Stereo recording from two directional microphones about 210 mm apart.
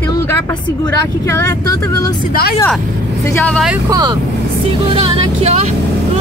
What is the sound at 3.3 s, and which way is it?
Speech, 5° left (ahead or behind).